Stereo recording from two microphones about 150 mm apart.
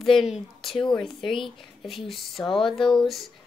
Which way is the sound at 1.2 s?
35° left (ahead or behind).